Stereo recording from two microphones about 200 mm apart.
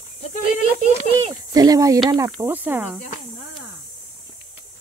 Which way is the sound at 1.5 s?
20° right (ahead or behind).